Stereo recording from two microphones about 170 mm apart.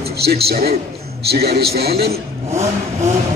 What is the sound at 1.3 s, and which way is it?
Speech, 65° right (ahead or behind).